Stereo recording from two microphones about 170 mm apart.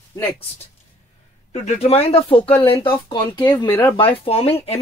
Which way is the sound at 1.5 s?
40° left (ahead or behind).